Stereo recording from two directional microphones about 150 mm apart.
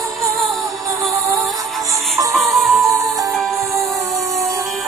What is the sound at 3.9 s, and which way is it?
Music, 20° right (ahead or behind).